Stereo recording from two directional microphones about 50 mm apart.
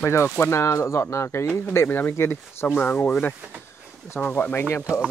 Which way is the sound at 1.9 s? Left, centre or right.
Left.